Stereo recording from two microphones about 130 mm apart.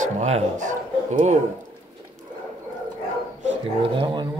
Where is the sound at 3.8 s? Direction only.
40° right (ahead or behind).